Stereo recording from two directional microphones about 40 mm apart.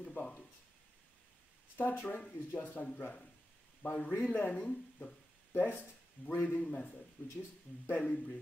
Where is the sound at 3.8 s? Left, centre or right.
Left.